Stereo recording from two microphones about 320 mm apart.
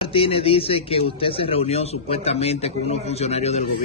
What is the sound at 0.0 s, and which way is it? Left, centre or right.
A man's voice, centre.